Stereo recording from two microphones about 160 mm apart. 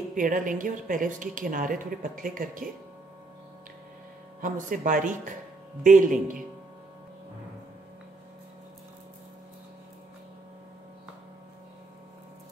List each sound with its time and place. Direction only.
0.1 s a woman's voice: 55° right (ahead or behind)
4.4 s a woman's voice: 60° right (ahead or behind)